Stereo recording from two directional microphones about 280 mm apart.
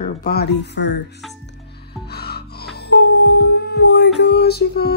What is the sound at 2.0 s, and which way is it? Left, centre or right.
Music, left.